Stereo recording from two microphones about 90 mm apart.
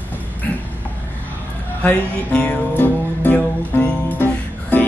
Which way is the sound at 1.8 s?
15° left (ahead or behind).